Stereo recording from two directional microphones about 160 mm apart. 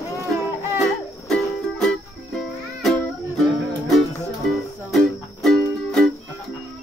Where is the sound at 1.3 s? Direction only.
5° left (ahead or behind).